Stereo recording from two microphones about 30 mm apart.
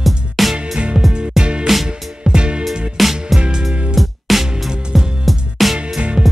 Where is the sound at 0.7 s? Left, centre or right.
Right.